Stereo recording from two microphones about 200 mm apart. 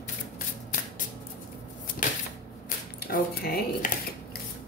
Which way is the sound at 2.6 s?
50° left (ahead or behind).